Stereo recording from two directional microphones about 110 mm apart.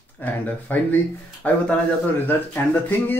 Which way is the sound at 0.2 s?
15° left (ahead or behind).